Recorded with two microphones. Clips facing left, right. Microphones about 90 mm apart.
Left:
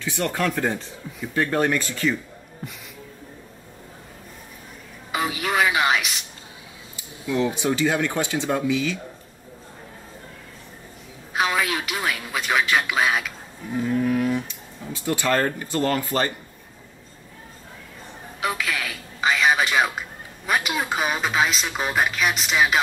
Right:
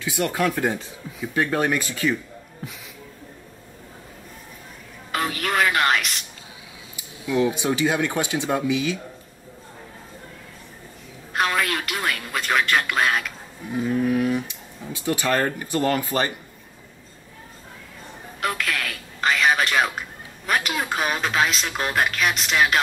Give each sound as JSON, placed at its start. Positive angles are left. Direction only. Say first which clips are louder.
{"t": 0.0, "sound": "speech", "louder": "right 1 dB", "side_deg": -10}
{"t": 5.1, "sound": "music", "louder": "even", "side_deg": 5}
{"t": 7.0, "sound": "speech", "louder": "right 2 dB", "side_deg": -15}
{"t": 11.3, "sound": "speech", "louder": "even", "side_deg": 0}
{"t": 13.7, "sound": "a sound", "louder": "even", "side_deg": -10}
{"t": 14.9, "sound": "speech", "louder": "even", "side_deg": -15}
{"t": 18.4, "sound": "a sound", "louder": "even", "side_deg": 0}